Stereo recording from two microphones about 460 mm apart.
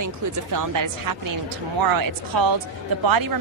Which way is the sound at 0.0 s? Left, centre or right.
Right.